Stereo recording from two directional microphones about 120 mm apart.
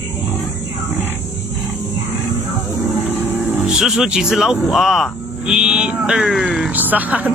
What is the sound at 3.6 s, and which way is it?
Speech, 5° right (ahead or behind).